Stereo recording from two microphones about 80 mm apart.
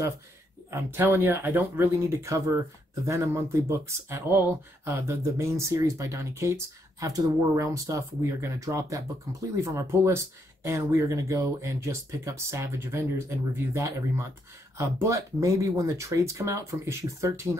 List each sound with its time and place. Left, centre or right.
0.7 s speech: right
1.0 s speech: right